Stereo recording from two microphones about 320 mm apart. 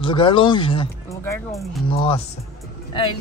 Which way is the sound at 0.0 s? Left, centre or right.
Centre.